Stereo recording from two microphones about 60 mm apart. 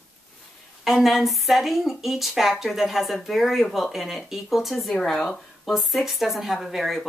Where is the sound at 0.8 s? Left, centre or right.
Centre.